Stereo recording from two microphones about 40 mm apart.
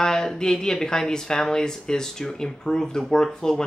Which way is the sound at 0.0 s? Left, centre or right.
Centre.